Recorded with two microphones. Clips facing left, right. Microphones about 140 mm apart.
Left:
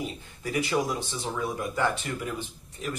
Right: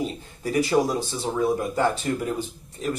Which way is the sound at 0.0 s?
35° right (ahead or behind).